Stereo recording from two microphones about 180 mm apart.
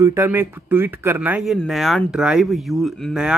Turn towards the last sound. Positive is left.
turn(degrees=-5)  # may be behind; listen again after turning